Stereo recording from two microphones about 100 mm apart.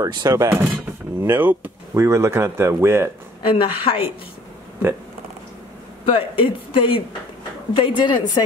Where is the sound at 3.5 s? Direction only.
60° left (ahead or behind).